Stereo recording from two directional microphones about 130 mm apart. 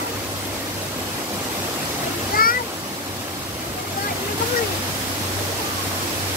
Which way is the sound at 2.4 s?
90° left.